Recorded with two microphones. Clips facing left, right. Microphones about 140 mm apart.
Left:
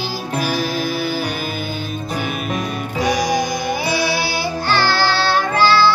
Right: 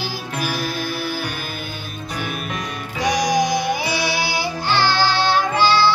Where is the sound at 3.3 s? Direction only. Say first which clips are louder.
Right 1 dB; 15° right (ahead or behind).